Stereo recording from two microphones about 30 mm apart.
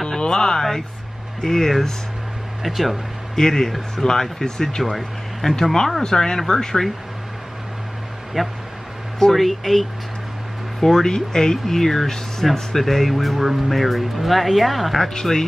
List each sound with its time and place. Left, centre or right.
0.2 s a sound: left
0.6 s a sound: centre
1.4 s speech: centre
2.6 s speech: centre
3.3 s speech: centre
4.8 s speech: centre
6.0 s speech: left
8.4 s speech: centre
11.1 s speech: centre
15.1 s speech: centre